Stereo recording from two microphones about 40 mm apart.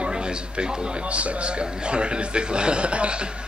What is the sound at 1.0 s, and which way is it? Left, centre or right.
Speech, right.